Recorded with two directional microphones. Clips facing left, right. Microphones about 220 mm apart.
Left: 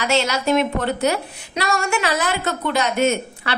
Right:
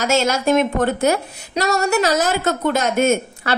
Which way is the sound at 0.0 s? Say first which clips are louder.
Right 3 dB; 45° right (ahead or behind).